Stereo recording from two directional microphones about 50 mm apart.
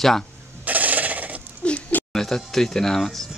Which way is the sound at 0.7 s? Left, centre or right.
Right.